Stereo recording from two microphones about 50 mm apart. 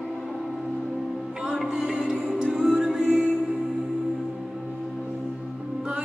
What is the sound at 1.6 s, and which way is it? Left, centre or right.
Music, centre.